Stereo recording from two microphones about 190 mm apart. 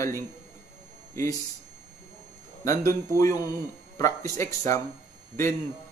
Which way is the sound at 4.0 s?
15° left (ahead or behind).